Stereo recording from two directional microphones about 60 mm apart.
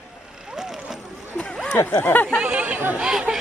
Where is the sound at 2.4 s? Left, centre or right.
Centre.